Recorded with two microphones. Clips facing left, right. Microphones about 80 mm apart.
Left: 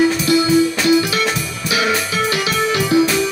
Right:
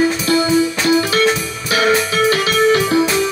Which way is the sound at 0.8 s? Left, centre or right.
Right.